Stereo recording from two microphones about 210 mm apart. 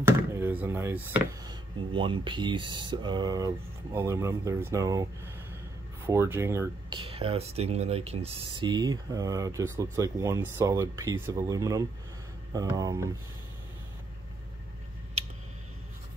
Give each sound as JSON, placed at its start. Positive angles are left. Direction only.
{"t": 0.0, "sound": "door", "side_deg": -10}
{"t": 1.4, "sound": "speech", "side_deg": -20}
{"t": 7.0, "sound": "speech", "side_deg": -25}